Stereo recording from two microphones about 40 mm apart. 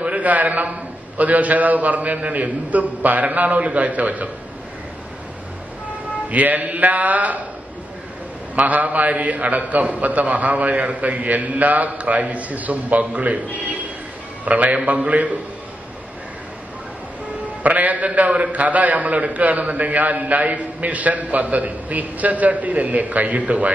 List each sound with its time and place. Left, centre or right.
0.0 s a man's voice: right
6.2 s a man's voice: right
8.5 s a man's voice: right
17.6 s a man's voice: right